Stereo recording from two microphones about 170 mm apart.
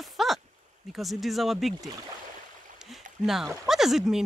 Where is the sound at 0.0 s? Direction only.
Centre (ahead or behind).